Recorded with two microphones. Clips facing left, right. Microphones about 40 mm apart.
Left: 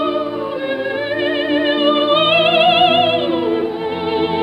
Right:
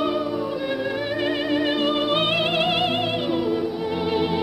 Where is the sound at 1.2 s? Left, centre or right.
Left.